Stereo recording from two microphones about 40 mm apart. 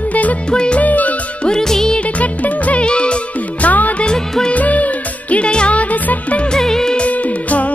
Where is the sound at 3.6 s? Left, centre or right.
Left.